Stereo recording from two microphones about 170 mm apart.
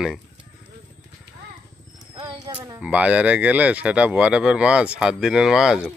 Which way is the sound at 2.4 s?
20° right (ahead or behind).